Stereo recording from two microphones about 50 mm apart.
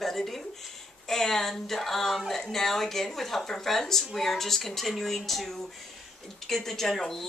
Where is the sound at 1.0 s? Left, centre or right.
Centre.